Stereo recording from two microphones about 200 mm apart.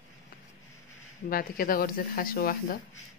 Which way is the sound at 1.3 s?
45° left (ahead or behind).